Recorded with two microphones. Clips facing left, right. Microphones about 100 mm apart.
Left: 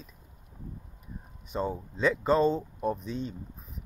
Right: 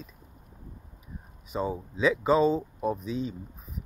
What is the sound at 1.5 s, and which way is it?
Speech, 5° right (ahead or behind).